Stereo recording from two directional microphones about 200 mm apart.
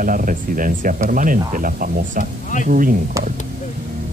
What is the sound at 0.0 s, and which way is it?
Speech, 45° right (ahead or behind).